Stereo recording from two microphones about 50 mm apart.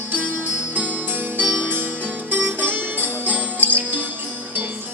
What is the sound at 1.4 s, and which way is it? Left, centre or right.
Music, right.